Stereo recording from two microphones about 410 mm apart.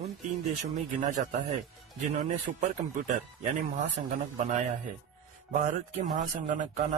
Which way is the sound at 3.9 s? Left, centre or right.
Centre.